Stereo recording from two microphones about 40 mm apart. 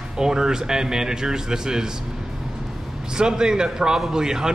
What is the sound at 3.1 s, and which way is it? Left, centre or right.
A man's voice, centre.